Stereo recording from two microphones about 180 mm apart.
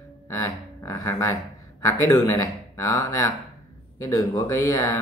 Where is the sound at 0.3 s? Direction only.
15° left (ahead or behind).